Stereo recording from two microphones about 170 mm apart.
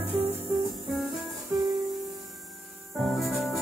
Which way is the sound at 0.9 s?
Centre (ahead or behind).